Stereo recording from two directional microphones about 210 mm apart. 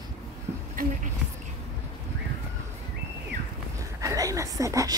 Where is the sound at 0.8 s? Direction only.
40° right (ahead or behind).